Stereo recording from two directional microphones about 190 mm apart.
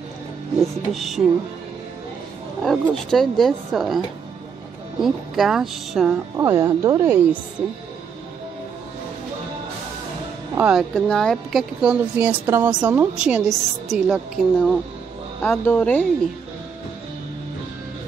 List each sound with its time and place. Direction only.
0.9 s a woman's voice: centre (ahead or behind)
2.6 s a woman's voice: centre (ahead or behind)
5.0 s a woman's voice: centre (ahead or behind)
6.3 s a woman's voice: 15° right (ahead or behind)
10.5 s a woman's voice: 5° right (ahead or behind)
15.4 s speech: 10° left (ahead or behind)